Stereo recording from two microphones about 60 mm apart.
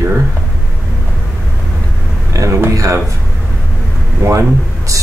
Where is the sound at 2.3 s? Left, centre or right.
Right.